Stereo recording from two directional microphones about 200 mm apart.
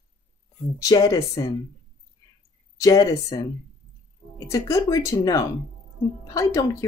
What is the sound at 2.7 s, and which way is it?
Speech, 15° left (ahead or behind).